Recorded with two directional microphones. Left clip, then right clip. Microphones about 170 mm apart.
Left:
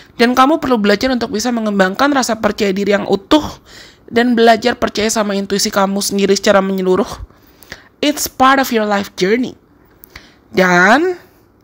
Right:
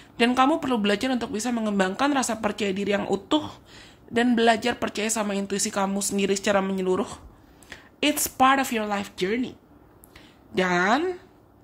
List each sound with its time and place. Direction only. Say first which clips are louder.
0.2 s speech: left 10 dB; 35° left (ahead or behind)